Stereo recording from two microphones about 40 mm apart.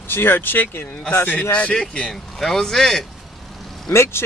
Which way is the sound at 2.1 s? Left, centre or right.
Centre.